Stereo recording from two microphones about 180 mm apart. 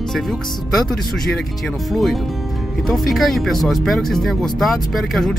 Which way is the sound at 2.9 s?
Centre (ahead or behind).